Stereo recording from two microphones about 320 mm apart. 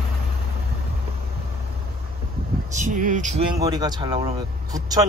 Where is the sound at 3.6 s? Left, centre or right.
Centre.